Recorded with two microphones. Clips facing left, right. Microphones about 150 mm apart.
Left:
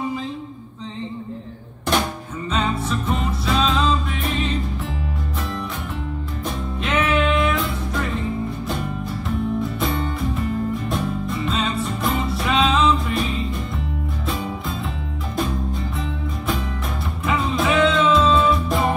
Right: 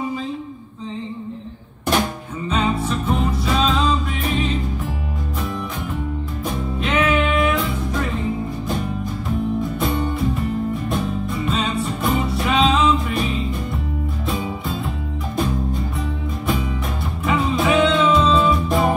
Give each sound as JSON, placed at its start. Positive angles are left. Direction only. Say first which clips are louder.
{"t": 2.5, "sound": "music", "louder": "right 2 dB", "side_deg": -5}
{"t": 6.8, "sound": "music", "louder": "right 1 dB", "side_deg": -5}
{"t": 10.9, "sound": "music", "louder": "right 1 dB", "side_deg": 0}
{"t": 14.3, "sound": "music", "louder": "right 2 dB", "side_deg": 0}
{"t": 17.3, "sound": "music", "louder": "right 2 dB", "side_deg": 0}